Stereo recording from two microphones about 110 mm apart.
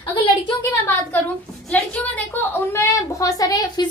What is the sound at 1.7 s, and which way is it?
A woman's voice, 15° left (ahead or behind).